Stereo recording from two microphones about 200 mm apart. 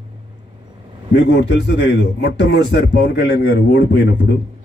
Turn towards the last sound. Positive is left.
turn(degrees=50)  # may be behind; listen again after turning